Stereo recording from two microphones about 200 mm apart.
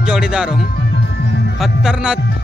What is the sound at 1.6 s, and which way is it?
Speech, 5° right (ahead or behind).